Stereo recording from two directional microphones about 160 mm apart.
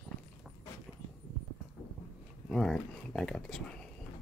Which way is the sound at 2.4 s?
Centre (ahead or behind).